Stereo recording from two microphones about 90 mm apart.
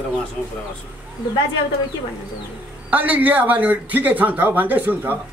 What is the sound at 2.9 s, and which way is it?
Speech, 20° right (ahead or behind).